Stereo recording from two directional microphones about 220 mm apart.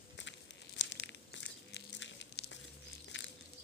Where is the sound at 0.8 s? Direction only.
55° left (ahead or behind).